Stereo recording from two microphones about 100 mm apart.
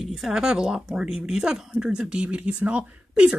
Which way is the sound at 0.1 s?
5° right (ahead or behind).